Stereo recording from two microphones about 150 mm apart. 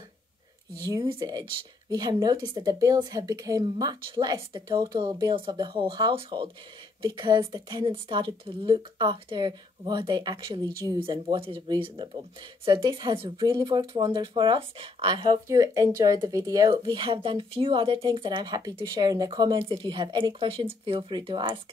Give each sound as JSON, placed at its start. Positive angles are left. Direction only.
{"t": 0.8, "sound": "speech", "side_deg": -25}